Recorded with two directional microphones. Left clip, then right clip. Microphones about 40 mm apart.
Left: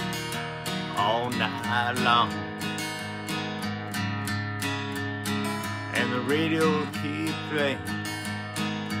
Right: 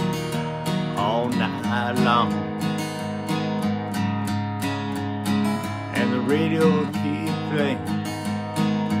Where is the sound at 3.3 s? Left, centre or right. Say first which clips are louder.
Right 6 dB; right.